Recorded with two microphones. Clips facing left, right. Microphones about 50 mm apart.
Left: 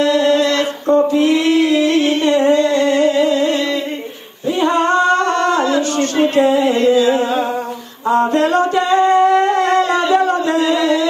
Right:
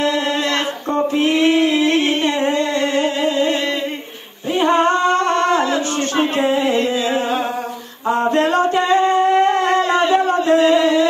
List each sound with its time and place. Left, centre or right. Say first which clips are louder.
0.0 s a sound: left 5 dB; right
4.6 s singing: even; right
6.8 s music: left 6 dB; right
8.3 s music: left 1 dB; right
8.7 s singing: left 2 dB; right
9.2 s shofar: left 2 dB; right
9.8 s a sound: left 1 dB; right